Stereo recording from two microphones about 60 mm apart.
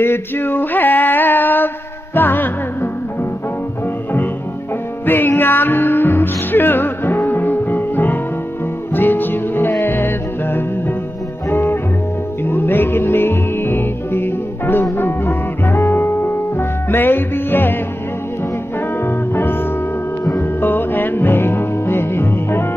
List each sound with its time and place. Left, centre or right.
0.0 s a sound: left
2.1 s music: left
5.0 s music: left
19.0 s music: left